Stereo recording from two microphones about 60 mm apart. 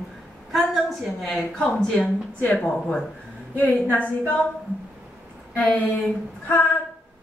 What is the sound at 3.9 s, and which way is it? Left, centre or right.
Speech, left.